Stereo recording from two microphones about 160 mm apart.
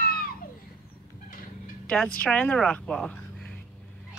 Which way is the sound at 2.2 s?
10° left (ahead or behind).